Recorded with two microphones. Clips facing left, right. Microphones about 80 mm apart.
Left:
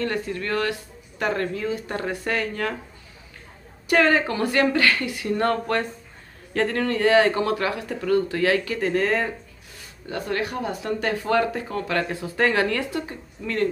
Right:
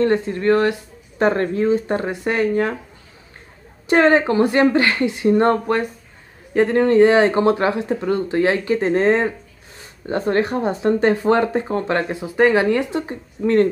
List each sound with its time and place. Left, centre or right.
0.0 s speech: right
3.8 s speech: right